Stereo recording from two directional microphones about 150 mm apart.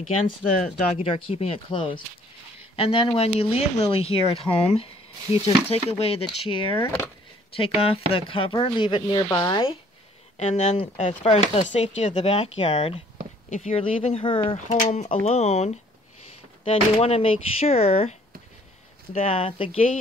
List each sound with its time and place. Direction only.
1.0 s speech: 40° left (ahead or behind)
10.3 s speech: 50° left (ahead or behind)
14.7 s speech: 50° left (ahead or behind)
19.1 s speech: 40° left (ahead or behind)